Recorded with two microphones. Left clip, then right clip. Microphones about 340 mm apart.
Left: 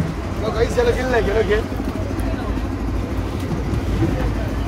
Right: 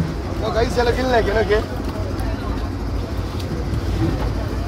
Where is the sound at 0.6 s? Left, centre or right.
Right.